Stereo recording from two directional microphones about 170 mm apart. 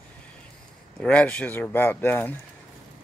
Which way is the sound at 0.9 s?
5° left (ahead or behind).